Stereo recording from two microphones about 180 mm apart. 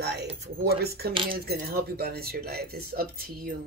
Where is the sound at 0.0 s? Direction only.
65° right (ahead or behind).